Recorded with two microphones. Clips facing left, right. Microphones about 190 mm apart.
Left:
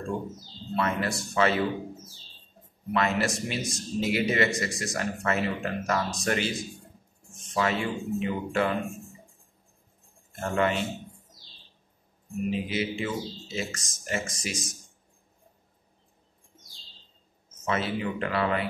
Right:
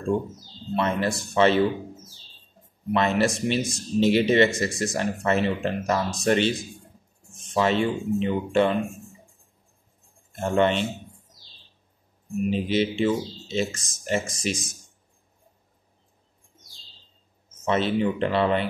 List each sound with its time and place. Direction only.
0.7 s a man's voice: 25° right (ahead or behind)
2.9 s a man's voice: 25° right (ahead or behind)
7.5 s a man's voice: 30° right (ahead or behind)
10.4 s a man's voice: 25° right (ahead or behind)
12.4 s a man's voice: 30° right (ahead or behind)
17.6 s a man's voice: 25° right (ahead or behind)